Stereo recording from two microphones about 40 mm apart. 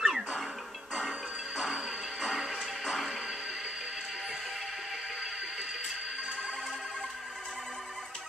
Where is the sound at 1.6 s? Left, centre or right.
Centre.